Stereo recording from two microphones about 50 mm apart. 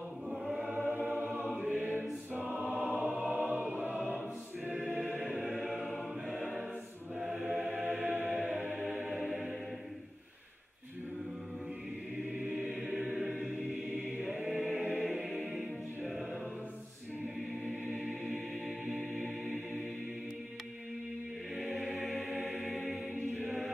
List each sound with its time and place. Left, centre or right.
1.6 s choir: right
5.4 s choir: centre
5.9 s music: centre
7.2 s choir: centre
7.9 s music: right
8.4 s music: centre
12.4 s choir: right
13.0 s choir: centre
14.2 s choir: centre
15.0 s music: centre
21.5 s choir: centre
22.0 s music: centre